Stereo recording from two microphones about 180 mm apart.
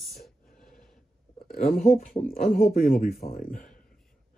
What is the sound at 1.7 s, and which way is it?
Speech, 45° left (ahead or behind).